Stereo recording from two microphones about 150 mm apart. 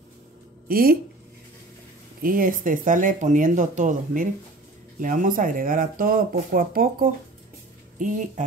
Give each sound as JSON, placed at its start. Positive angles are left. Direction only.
{"t": 0.7, "sound": "speech", "side_deg": -75}
{"t": 2.2, "sound": "speech", "side_deg": -70}
{"t": 8.0, "sound": "speech", "side_deg": -55}